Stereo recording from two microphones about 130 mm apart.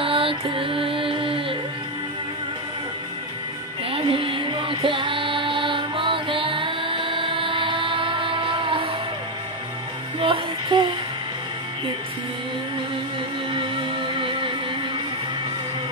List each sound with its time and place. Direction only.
0.0 s music: 45° right (ahead or behind)
3.9 s music: 45° right (ahead or behind)
10.2 s music: 40° right (ahead or behind)
13.5 s music: 40° right (ahead or behind)